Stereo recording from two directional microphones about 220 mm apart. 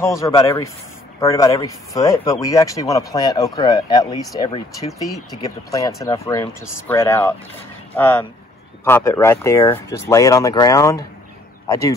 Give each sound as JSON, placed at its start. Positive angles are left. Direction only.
{"t": 0.2, "sound": "speech", "side_deg": 15}
{"t": 5.0, "sound": "speech", "side_deg": 0}
{"t": 5.7, "sound": "speech", "side_deg": 15}